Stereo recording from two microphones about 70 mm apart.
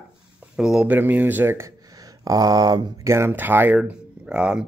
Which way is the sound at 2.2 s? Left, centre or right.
Right.